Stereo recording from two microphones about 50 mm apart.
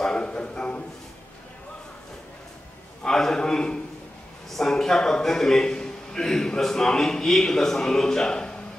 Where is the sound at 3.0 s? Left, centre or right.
Centre.